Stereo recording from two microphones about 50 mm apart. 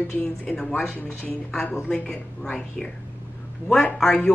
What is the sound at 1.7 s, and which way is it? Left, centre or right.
Speech, centre.